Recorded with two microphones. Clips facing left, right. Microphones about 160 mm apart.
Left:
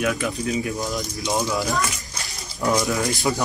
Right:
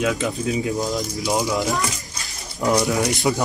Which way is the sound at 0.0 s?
20° right (ahead or behind).